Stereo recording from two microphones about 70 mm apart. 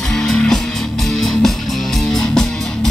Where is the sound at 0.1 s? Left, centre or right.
Centre.